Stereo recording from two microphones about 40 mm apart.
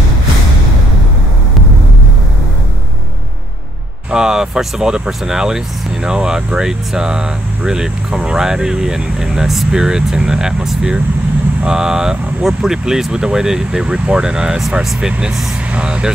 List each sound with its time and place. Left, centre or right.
4.1 s speech: centre